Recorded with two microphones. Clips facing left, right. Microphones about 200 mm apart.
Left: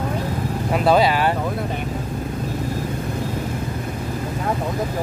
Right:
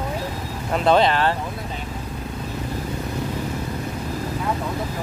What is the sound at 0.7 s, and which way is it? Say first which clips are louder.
Speech: left 1 dB; 5° left (ahead or behind).